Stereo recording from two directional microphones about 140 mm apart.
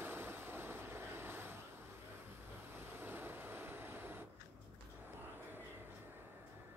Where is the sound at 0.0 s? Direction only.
15° right (ahead or behind).